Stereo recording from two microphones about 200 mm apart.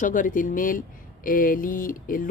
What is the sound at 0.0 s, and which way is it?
A woman's voice, 40° left (ahead or behind).